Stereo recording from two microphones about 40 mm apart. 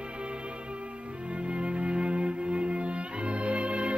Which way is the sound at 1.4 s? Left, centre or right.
Right.